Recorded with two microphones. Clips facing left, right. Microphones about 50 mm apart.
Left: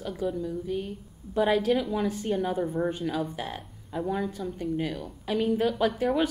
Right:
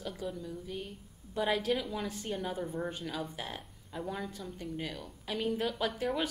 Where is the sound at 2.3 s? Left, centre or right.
Centre.